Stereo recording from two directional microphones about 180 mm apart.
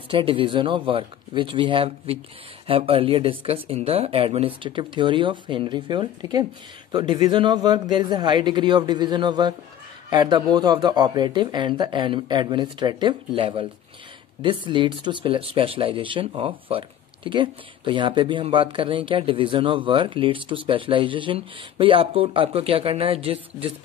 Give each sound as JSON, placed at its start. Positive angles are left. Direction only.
{"t": 0.1, "sound": "speech", "side_deg": -30}